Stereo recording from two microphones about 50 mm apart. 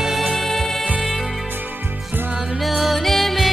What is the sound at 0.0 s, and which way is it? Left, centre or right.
Music, centre.